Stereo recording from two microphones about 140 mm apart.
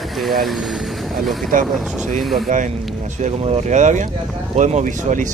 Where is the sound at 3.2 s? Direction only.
50° right (ahead or behind).